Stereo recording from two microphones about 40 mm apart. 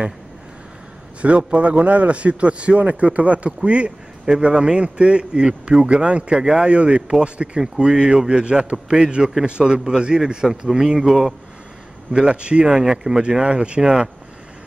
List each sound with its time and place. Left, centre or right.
1.2 s a man's voice: right
6.3 s speech: centre
6.7 s a man's voice: right; by 11.3 s centre
12.1 s a man's voice: right
12.6 s speech: centre
13.4 s a man's voice: right